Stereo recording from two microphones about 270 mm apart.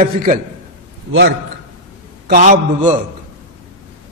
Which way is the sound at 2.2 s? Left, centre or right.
Right.